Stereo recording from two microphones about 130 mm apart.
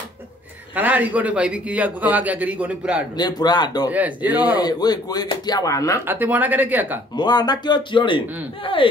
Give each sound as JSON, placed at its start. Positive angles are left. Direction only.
{"t": 0.7, "sound": "a man's voice", "side_deg": -10}
{"t": 3.2, "sound": "speech", "side_deg": 30}
{"t": 3.9, "sound": "a man's voice", "side_deg": -10}
{"t": 4.6, "sound": "speech", "side_deg": 30}
{"t": 6.0, "sound": "a man's voice", "side_deg": -15}
{"t": 7.2, "sound": "speech", "side_deg": 30}